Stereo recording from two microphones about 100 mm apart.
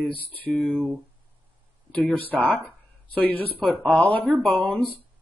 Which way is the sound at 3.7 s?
15° left (ahead or behind).